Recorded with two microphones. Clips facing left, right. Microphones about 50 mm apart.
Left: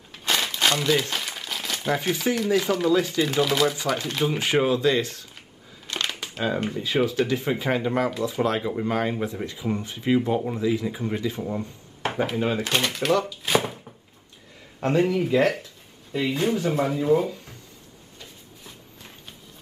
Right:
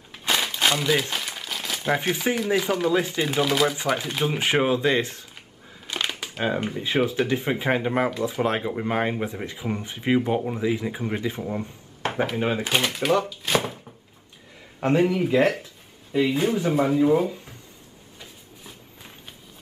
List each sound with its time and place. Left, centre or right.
0.1 s crumpling: centre
2.3 s speech: centre
2.9 s speech: right
3.3 s speech: centre
4.5 s speech: right
5.9 s crumpling: centre
6.4 s speech: centre
7.2 s speech: right
12.0 s a sound: centre
12.4 s speech: centre
14.8 s speech: centre
18.2 s a sound: centre